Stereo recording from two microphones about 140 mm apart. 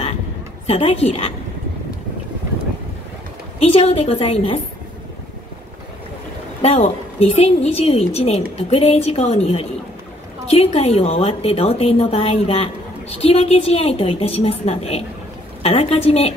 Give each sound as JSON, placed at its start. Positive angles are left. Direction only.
{"t": 0.7, "sound": "a woman's voice", "side_deg": 45}
{"t": 3.5, "sound": "a woman's voice", "side_deg": 45}
{"t": 6.6, "sound": "a woman's voice", "side_deg": 45}